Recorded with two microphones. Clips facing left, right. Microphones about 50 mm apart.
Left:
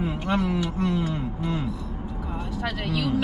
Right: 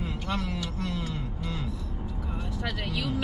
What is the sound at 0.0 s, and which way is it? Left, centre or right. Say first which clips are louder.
Speech: left 7 dB; centre.